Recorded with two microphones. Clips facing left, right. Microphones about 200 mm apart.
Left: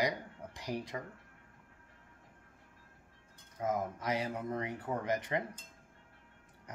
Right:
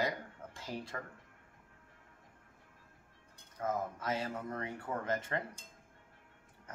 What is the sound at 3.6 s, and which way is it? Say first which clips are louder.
Speech: left 2 dB; 15° left (ahead or behind).